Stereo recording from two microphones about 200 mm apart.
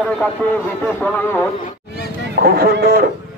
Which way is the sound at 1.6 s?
50° left (ahead or behind).